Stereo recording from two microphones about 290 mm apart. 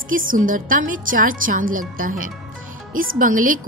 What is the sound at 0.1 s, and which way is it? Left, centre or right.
A woman's voice, right.